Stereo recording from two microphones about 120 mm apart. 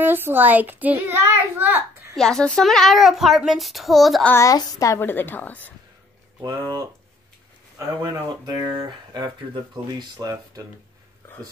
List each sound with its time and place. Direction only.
0.0 s a child's voice: 15° right (ahead or behind)
2.1 s speech: 5° left (ahead or behind)
4.3 s a woman's voice: 25° left (ahead or behind)
6.4 s speech: 35° right (ahead or behind)
8.0 s speech: 30° right (ahead or behind)